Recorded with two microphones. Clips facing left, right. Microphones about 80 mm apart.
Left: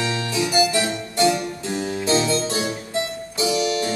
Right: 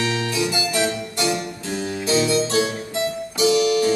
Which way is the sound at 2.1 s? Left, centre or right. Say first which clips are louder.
Right 5 dB; left.